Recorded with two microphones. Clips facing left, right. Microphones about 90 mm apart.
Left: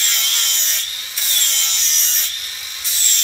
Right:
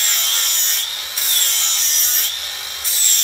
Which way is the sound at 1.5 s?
40° right (ahead or behind).